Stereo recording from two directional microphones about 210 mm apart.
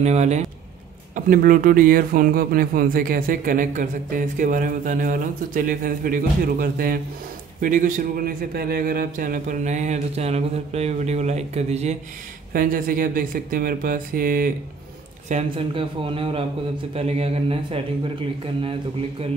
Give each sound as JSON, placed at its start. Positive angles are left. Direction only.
{"t": 0.0, "sound": "speech", "side_deg": -35}
{"t": 12.5, "sound": "speech", "side_deg": -40}
{"t": 15.2, "sound": "a man's voice", "side_deg": -30}